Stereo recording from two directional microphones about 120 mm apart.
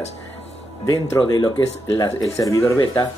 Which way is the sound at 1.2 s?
40° left (ahead or behind).